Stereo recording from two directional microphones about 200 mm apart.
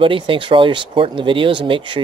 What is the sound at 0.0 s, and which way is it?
Speech, 25° right (ahead or behind).